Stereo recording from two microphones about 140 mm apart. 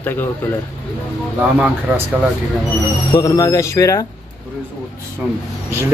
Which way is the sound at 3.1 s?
25° left (ahead or behind).